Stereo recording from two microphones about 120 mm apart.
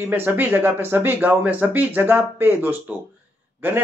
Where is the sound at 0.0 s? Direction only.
15° right (ahead or behind).